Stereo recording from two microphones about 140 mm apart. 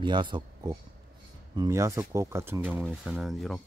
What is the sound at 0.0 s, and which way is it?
Speech, 35° right (ahead or behind).